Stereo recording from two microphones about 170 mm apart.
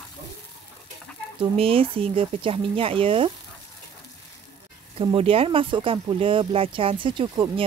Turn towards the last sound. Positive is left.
turn(degrees=-25)  # may be behind; listen again after turning